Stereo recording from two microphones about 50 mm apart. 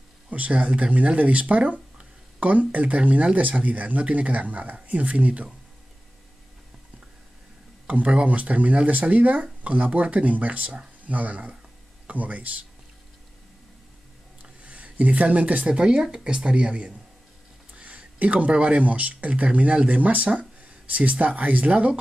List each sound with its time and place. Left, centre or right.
0.3 s speech: right
7.8 s speech: right
14.4 s speech: right
17.7 s a sound: right
18.5 s speech: right
20.3 s a sound: right
21.4 s speech: right